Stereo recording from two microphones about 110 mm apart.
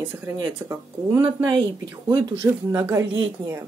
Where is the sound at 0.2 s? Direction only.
25° right (ahead or behind).